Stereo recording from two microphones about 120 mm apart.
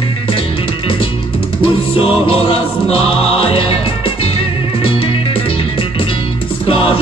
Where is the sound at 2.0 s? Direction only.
55° left (ahead or behind).